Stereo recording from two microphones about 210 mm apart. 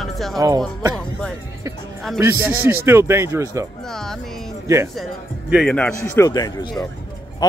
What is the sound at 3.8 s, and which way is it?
Speech, centre (ahead or behind).